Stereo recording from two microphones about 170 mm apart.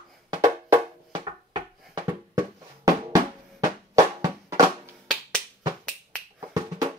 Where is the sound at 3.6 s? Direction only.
20° right (ahead or behind).